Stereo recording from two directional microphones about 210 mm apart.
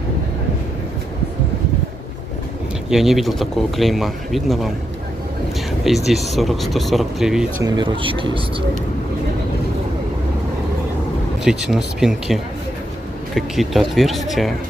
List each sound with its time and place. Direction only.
2.9 s speech: centre (ahead or behind)
5.9 s speech: centre (ahead or behind)
7.6 s speech: 20° right (ahead or behind)
11.4 s speech: centre (ahead or behind)